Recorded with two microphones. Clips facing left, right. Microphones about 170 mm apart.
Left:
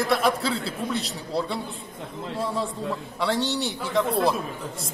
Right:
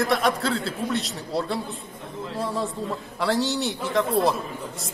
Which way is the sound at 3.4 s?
Centre (ahead or behind).